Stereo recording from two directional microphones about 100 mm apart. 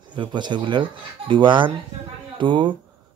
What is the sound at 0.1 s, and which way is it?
Speech, 50° right (ahead or behind).